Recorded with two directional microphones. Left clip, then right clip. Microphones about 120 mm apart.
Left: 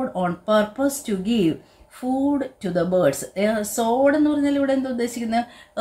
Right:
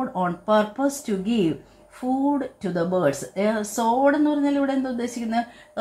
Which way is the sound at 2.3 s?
30° left (ahead or behind).